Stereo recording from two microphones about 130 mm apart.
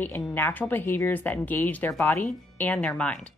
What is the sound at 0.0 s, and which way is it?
Speech, 15° left (ahead or behind).